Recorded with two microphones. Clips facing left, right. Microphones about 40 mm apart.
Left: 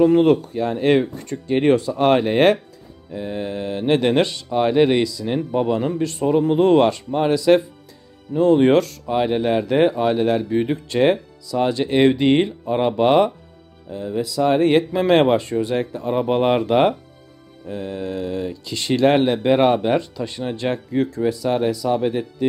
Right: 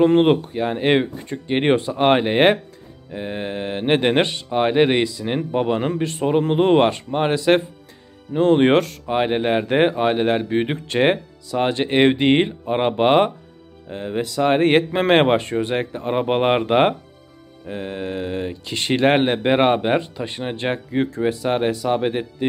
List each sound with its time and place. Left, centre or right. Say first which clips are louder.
0.0 s speech: left 1 dB; right
13.8 s speech: even; right